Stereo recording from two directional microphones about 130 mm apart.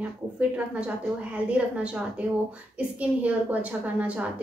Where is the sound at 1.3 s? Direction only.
10° right (ahead or behind).